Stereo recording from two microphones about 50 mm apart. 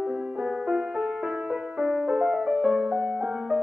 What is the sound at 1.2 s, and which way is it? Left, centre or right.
Music, right.